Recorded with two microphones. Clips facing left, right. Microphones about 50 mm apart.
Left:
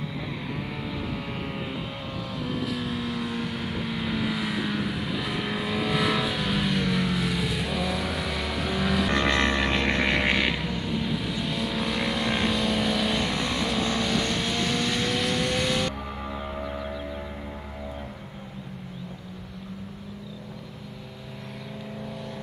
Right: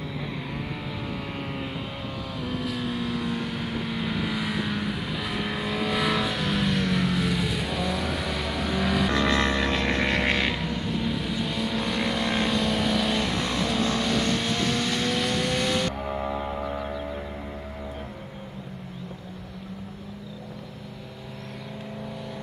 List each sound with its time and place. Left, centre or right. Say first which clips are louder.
2.3 s vehicle: left 1 dB; centre
9.1 s vehicle: even; left; by 15.9 s centre
16.1 s music: right 5 dB; centre